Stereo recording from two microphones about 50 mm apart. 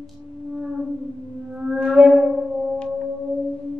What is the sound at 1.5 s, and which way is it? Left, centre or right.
Music, centre.